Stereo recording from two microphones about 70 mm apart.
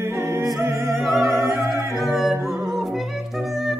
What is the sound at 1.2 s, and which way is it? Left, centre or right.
Music, right.